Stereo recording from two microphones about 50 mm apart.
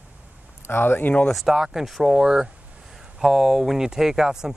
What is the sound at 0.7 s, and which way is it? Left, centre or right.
Speech, left.